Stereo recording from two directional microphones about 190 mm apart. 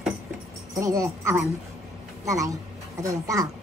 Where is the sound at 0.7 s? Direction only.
15° right (ahead or behind).